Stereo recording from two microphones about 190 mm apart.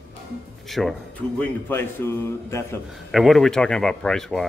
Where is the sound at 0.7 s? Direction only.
Centre (ahead or behind).